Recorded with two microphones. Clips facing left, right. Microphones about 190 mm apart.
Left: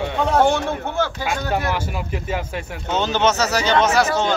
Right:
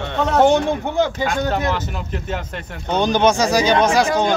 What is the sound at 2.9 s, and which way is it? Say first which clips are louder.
Speech: right 3 dB; 15° right (ahead or behind).